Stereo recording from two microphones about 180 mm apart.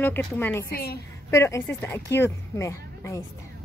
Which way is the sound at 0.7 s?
55° left (ahead or behind).